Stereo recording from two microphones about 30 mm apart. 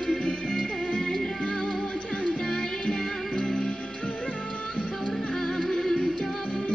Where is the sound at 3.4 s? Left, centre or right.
Centre.